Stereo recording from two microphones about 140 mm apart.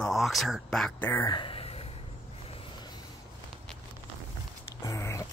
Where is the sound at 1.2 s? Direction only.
35° left (ahead or behind).